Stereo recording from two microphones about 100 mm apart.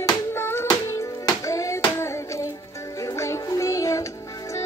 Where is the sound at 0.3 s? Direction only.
25° left (ahead or behind).